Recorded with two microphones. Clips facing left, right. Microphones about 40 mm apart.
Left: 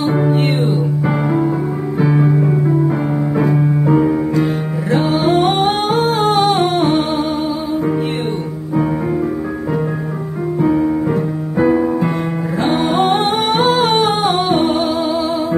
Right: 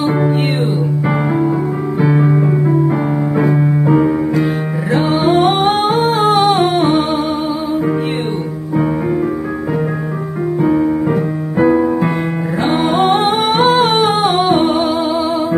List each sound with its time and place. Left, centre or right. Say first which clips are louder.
0.3 s music: even; centre
2.0 s music: right 1 dB; centre
3.5 s piano: right 1 dB; right
4.9 s humming: right 1 dB; centre
10.8 s keyboard: right 1 dB; right
12.8 s humming: right 3 dB; centre